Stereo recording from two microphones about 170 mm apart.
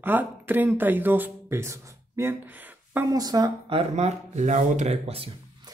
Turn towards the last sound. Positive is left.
turn(degrees=-35)  # may be behind; listen again after turning